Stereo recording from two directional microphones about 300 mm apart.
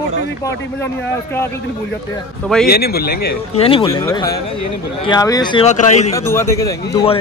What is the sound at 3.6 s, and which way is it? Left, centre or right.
A man's voice, centre.